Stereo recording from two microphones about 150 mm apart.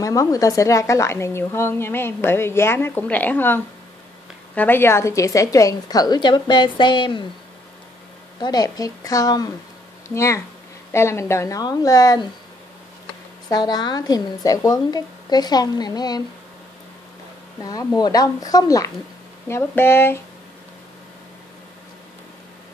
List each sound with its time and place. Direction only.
0.0 s a woman's voice: 20° left (ahead or behind)
8.4 s a woman's voice: 25° left (ahead or behind)
13.5 s a woman's voice: 25° left (ahead or behind)
17.6 s a woman's voice: 25° left (ahead or behind)